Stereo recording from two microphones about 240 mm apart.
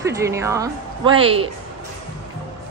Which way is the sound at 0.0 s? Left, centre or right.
Centre.